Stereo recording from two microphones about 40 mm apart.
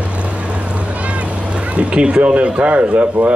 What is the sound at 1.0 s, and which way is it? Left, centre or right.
Speech, right.